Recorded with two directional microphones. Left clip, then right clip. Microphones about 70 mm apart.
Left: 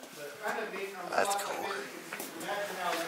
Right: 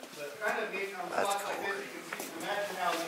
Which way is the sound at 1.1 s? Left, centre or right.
Centre.